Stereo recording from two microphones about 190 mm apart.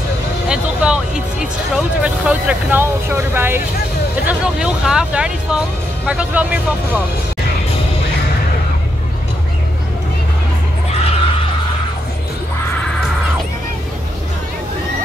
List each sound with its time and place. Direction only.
0.5 s music: 5° right (ahead or behind)
2.0 s speech: 5° right (ahead or behind)
10.9 s a sound: 30° left (ahead or behind)